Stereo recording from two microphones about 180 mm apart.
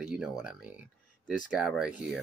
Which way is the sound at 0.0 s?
5° right (ahead or behind).